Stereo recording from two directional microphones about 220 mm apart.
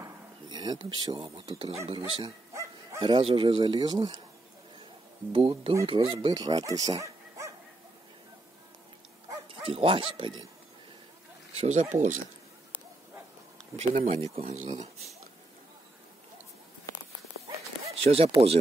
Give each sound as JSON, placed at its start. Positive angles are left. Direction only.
{"t": 0.0, "sound": "a sound", "side_deg": -20}
{"t": 0.8, "sound": "speech", "side_deg": -20}
{"t": 2.5, "sound": "bow-wow", "side_deg": -15}
{"t": 3.1, "sound": "speech", "side_deg": -25}
{"t": 5.3, "sound": "speech", "side_deg": -25}
{"t": 9.6, "sound": "speech", "side_deg": -25}
{"t": 11.5, "sound": "speech", "side_deg": -30}
{"t": 13.6, "sound": "speech", "side_deg": -30}
{"t": 18.1, "sound": "speech", "side_deg": -25}